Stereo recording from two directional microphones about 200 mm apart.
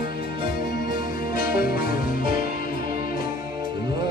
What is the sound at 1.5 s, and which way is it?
Music, 50° left (ahead or behind).